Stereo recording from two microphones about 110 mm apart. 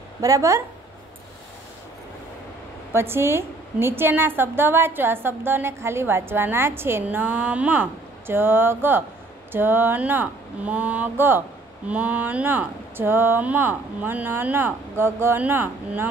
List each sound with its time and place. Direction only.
0.2 s a woman's voice: 30° right (ahead or behind)
2.9 s a woman's voice: 20° right (ahead or behind)